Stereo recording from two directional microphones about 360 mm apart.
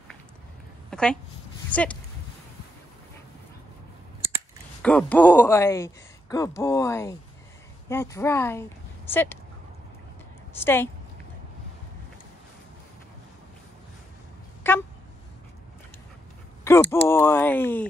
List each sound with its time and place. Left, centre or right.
0.8 s speech: centre
4.8 s speech: centre
10.6 s speech: centre
14.7 s a sound: centre
16.6 s speech: centre